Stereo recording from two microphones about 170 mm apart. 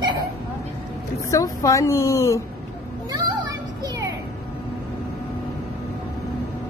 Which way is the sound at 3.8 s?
20° right (ahead or behind).